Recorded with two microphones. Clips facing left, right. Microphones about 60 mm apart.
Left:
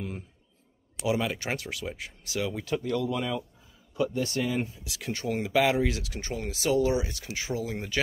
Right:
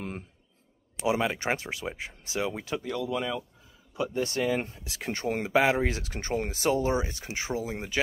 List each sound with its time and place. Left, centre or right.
0.9 s speech: right
2.7 s speech: centre; by 4.6 s right
4.6 s speech: right